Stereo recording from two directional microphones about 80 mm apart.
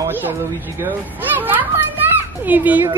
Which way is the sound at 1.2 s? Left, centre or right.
Right.